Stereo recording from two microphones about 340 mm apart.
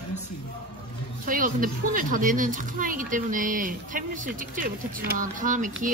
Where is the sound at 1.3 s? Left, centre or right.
Right.